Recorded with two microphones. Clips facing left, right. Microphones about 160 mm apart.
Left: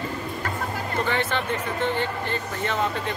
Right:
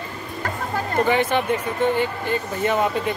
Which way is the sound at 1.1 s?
15° right (ahead or behind).